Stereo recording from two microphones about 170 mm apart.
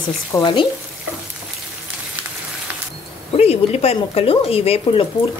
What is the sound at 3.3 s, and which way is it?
Speech, 35° left (ahead or behind).